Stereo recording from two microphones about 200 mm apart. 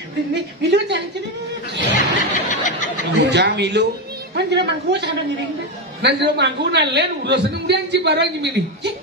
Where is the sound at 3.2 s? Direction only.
60° right (ahead or behind).